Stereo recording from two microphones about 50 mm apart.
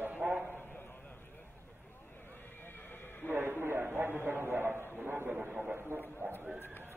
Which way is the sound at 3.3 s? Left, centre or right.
Right.